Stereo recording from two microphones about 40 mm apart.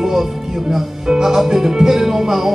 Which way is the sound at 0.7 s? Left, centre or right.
Centre.